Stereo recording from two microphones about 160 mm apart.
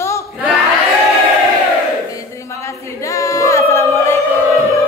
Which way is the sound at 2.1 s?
20° left (ahead or behind).